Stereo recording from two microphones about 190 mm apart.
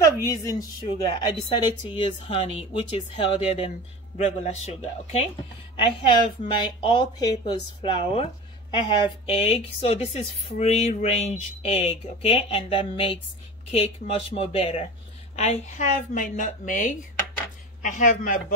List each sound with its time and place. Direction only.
0.3 s a woman's voice: 20° left (ahead or behind); by 18.4 s 45° left (ahead or behind)